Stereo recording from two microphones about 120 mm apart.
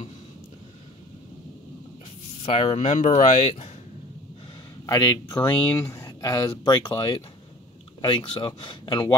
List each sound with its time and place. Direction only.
2.3 s speech: 60° left (ahead or behind)
4.8 s speech: 30° left (ahead or behind)